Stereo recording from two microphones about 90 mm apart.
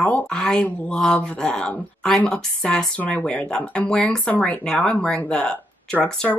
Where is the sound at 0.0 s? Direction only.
10° left (ahead or behind).